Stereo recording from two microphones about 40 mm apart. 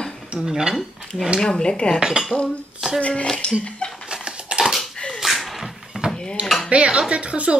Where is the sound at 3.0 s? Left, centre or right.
Left.